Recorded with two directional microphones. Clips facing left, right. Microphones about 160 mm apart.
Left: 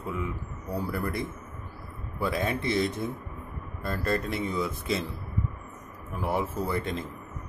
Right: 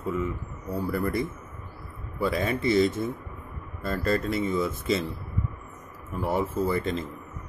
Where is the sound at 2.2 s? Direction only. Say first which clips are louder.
Right 3 dB; centre (ahead or behind).